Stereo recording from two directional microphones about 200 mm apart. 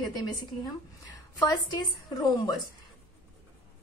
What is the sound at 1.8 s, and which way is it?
Speech, 20° left (ahead or behind).